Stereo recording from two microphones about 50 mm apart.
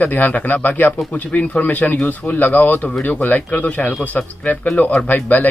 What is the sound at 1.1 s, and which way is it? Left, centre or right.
Speech, left.